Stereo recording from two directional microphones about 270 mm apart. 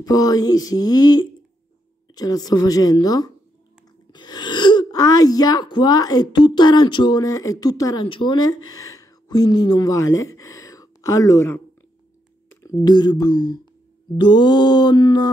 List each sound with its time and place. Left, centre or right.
0.0 s speech: centre
12.8 s speech: centre